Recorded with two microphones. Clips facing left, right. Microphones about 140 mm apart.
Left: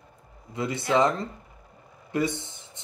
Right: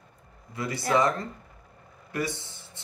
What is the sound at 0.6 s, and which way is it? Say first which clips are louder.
Speech: left 2 dB; 25° left (ahead or behind).